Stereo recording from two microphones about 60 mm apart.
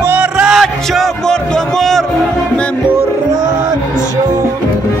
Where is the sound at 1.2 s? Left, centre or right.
Centre.